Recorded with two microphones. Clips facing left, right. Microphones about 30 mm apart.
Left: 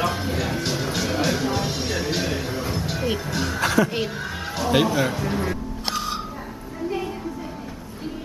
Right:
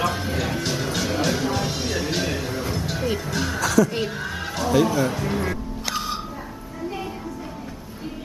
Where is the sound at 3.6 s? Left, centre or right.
Left.